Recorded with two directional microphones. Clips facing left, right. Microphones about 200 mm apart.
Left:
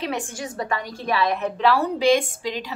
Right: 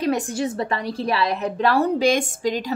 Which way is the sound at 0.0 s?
40° right (ahead or behind).